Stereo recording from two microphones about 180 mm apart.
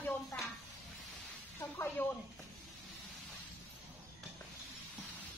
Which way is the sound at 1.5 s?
10° left (ahead or behind).